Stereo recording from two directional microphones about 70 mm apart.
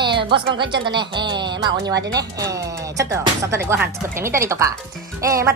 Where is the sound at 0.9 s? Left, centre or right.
Right.